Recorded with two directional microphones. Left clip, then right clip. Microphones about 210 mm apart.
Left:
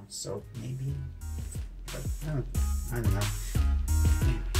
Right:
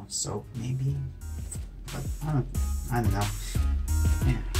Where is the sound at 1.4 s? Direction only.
Centre (ahead or behind).